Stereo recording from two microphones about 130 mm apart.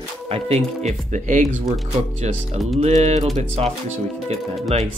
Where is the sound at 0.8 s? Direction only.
70° right (ahead or behind).